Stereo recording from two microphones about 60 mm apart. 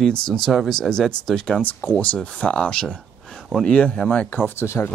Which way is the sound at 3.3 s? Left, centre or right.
Centre.